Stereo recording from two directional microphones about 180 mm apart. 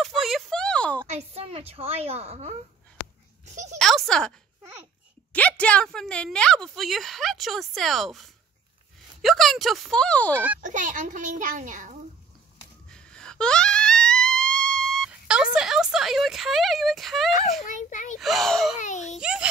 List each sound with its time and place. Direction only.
0.0 s a sound: centre (ahead or behind)
1.0 s a woman's voice: 35° right (ahead or behind)
3.7 s a woman's voice: centre (ahead or behind)
5.3 s a woman's voice: 10° left (ahead or behind)
10.6 s a child's voice: 45° right (ahead or behind)
12.9 s wail: 5° left (ahead or behind)
17.6 s a child's voice: 45° left (ahead or behind)
18.2 s a woman's voice: centre (ahead or behind)
18.8 s a child's voice: 40° left (ahead or behind)
19.1 s a woman's voice: 5° right (ahead or behind)